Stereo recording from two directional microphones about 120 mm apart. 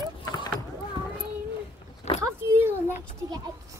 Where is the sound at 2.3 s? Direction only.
20° right (ahead or behind).